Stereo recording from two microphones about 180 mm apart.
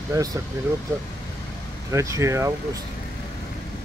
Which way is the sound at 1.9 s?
15° right (ahead or behind).